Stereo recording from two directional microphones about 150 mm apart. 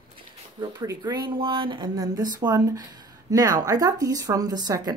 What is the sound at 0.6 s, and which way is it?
A woman's voice, 25° right (ahead or behind).